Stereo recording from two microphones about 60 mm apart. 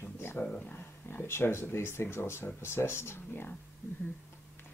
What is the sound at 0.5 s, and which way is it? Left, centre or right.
Speech, left.